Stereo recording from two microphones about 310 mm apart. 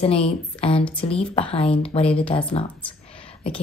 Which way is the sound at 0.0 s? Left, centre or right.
Centre.